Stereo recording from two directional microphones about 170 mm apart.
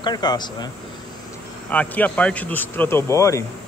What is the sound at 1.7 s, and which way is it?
Speech, 10° left (ahead or behind).